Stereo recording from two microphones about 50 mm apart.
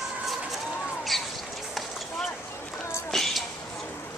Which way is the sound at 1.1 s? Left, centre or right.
Centre.